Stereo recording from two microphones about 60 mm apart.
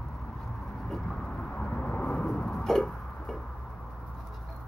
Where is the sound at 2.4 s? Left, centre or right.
Centre.